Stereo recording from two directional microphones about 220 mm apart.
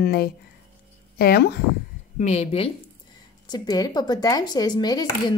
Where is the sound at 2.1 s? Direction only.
30° left (ahead or behind).